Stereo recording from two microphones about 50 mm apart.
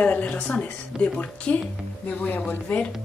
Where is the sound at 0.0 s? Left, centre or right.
Left.